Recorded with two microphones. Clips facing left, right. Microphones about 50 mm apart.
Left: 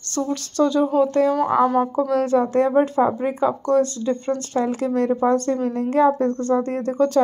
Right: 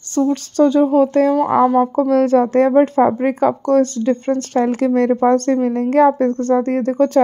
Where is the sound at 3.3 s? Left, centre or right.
Right.